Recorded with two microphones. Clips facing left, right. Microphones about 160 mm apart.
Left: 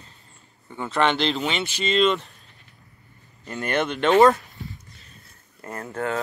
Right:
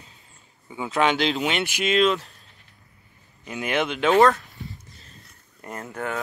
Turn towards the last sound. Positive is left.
turn(degrees=-20)  # may be behind; listen again after turning